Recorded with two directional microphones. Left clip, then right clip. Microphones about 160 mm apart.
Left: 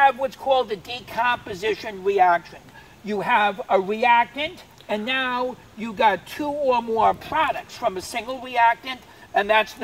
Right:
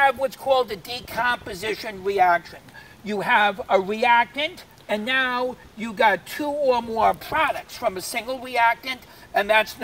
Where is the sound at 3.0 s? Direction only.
5° right (ahead or behind).